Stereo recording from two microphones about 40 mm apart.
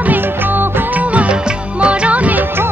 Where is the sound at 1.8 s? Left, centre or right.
Right.